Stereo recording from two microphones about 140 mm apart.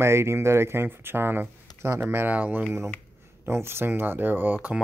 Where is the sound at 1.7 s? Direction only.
20° right (ahead or behind).